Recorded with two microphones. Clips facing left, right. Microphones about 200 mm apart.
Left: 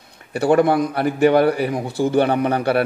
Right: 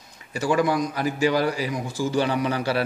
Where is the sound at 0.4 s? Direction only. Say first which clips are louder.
Left 6 dB; 60° left (ahead or behind).